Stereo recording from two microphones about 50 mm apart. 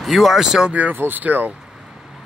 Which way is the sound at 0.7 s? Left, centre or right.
Right.